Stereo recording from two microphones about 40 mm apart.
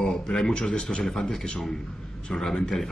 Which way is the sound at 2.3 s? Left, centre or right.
Centre.